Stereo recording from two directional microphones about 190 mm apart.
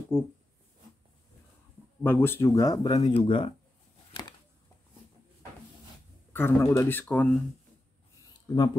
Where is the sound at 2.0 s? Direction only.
10° left (ahead or behind); by 3.5 s 30° left (ahead or behind).